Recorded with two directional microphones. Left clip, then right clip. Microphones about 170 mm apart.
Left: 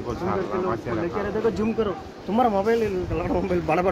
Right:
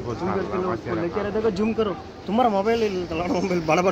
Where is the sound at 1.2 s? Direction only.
50° right (ahead or behind).